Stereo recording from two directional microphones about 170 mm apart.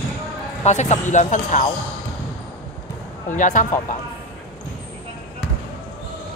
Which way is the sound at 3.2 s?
45° left (ahead or behind).